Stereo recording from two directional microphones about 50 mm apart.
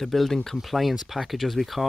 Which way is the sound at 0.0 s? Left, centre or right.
Centre.